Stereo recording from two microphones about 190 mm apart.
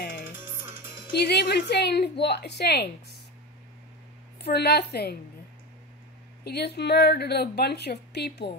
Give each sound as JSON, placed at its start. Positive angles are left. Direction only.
{"t": 1.1, "sound": "a woman's voice", "side_deg": 60}
{"t": 4.5, "sound": "a woman's voice", "side_deg": 60}
{"t": 6.4, "sound": "a woman's voice", "side_deg": 60}